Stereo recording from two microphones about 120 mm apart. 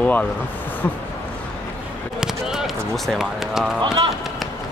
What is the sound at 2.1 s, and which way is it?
Run, 5° right (ahead or behind).